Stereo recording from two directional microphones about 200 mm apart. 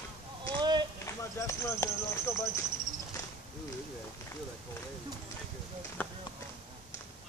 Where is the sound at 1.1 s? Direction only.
15° left (ahead or behind).